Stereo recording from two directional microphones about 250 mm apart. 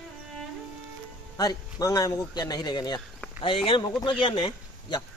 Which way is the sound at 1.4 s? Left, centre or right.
Centre.